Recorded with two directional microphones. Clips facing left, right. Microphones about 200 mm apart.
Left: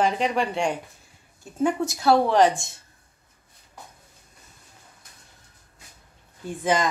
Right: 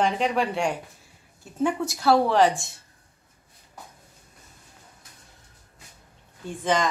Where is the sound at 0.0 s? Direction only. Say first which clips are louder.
Left 1 dB; centre (ahead or behind).